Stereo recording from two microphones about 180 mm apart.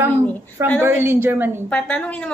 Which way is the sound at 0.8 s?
10° right (ahead or behind).